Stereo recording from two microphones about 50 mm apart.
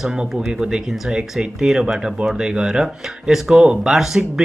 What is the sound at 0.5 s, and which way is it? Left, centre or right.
Speech, centre.